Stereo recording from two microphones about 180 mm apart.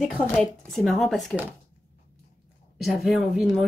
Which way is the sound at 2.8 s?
Centre (ahead or behind).